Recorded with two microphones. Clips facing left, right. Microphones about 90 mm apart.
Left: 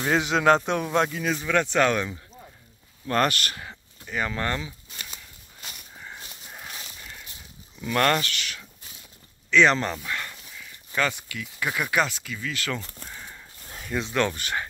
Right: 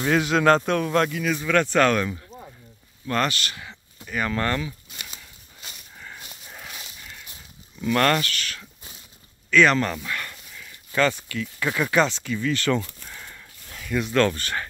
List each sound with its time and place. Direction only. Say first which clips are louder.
0.1 s speech: right 1 dB; 15° left (ahead or behind)
3.3 s speech: left 1 dB; 45° left (ahead or behind)
4.0 s speech: right 3 dB; 15° left (ahead or behind)
5.9 s a sound: right 1 dB; 20° left (ahead or behind)
6.5 s horse: even; 15° left (ahead or behind)
7.8 s speech: right 2 dB; 10° left (ahead or behind)
13.9 s speech: right 4 dB; 20° left (ahead or behind)